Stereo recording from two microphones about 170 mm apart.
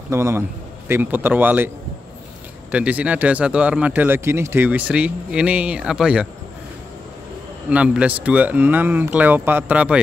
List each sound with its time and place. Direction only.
0.1 s speech: 15° right (ahead or behind)
2.7 s speech: 10° right (ahead or behind)
7.7 s speech: 5° right (ahead or behind)